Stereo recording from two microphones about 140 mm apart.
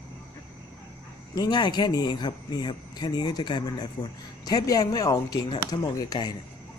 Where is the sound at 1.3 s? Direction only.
30° left (ahead or behind).